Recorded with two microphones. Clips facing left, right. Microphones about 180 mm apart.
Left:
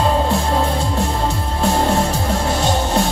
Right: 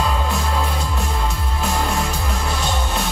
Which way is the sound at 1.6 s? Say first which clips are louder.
Left 6 dB; 30° left (ahead or behind).